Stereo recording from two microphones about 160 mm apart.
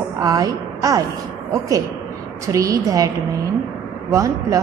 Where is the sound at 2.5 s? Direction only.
20° right (ahead or behind).